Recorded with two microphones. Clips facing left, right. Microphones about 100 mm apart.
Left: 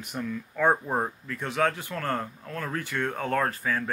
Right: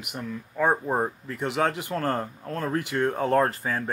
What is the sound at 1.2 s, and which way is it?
Speech, 25° right (ahead or behind).